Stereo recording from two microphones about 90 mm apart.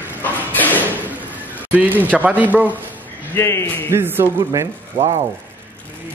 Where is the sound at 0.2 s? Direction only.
20° left (ahead or behind).